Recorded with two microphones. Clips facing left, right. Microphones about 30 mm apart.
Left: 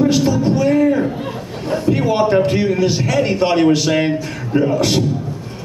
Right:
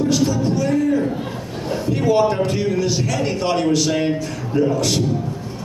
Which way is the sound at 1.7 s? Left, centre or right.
Centre.